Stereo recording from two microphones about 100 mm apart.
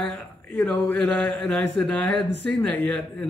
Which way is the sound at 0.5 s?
15° left (ahead or behind).